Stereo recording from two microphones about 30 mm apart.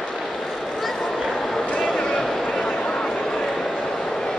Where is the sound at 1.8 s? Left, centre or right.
Centre.